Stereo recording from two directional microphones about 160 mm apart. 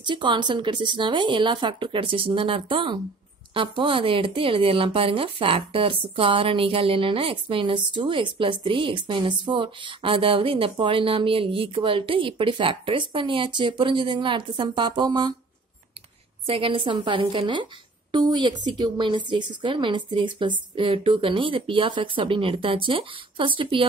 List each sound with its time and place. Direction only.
0.0 s speech: 30° right (ahead or behind)
16.4 s speech: 35° right (ahead or behind)